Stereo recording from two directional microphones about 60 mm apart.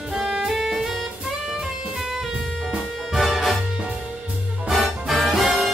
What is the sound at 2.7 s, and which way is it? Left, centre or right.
Music, centre.